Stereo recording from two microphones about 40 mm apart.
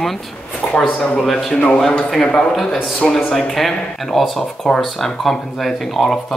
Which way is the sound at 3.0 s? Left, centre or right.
Centre.